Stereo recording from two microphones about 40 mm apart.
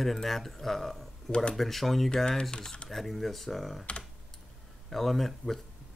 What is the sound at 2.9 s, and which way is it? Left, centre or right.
Speech, centre.